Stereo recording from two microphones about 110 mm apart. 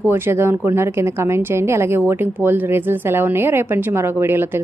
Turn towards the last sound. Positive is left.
turn(degrees=-20)  # may be behind; listen again after turning